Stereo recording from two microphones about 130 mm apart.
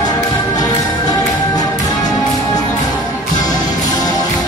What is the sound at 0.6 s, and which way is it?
Music, 30° left (ahead or behind).